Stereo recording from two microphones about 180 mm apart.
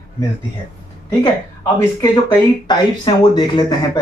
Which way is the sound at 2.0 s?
25° left (ahead or behind).